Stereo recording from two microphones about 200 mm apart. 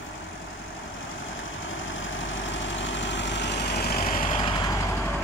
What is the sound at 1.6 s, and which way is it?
Vehicle, 75° left (ahead or behind).